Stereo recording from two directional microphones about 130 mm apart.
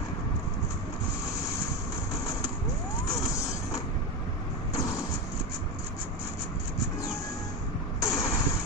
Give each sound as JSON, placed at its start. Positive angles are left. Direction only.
{"t": 3.3, "sound": "creak", "side_deg": 25}
{"t": 4.7, "sound": "vehicle", "side_deg": 25}
{"t": 8.0, "sound": "vehicle", "side_deg": 25}